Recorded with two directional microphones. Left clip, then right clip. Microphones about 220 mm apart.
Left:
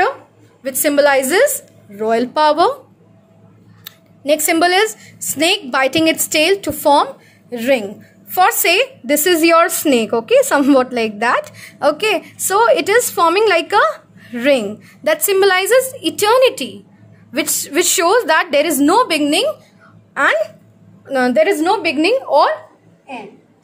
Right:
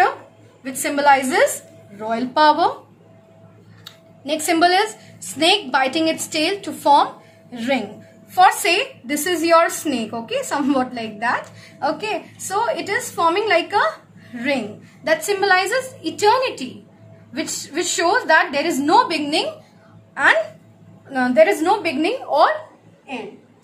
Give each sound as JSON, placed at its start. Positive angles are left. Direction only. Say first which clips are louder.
{"t": 0.7, "sound": "a woman's voice", "louder": "left 3 dB", "side_deg": 50}
{"t": 3.8, "sound": "a woman's voice", "louder": "left 10 dB", "side_deg": 40}
{"t": 21.1, "sound": "speech", "louder": "left 1 dB", "side_deg": 45}